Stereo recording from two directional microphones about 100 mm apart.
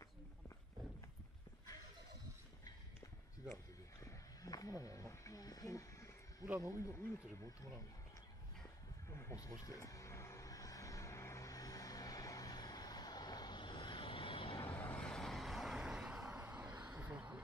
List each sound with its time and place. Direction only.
4.0 s a sound: 35° left (ahead or behind)
6.6 s speech: 35° left (ahead or behind)
9.1 s vehicle: 30° left (ahead or behind); by 14.7 s 60° left (ahead or behind)
14.7 s vehicle: 15° left (ahead or behind); by 17.4 s 15° right (ahead or behind)